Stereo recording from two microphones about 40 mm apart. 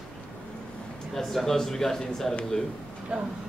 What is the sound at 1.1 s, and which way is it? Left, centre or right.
Speech, centre.